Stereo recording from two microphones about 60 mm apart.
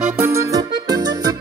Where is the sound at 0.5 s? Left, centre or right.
Right.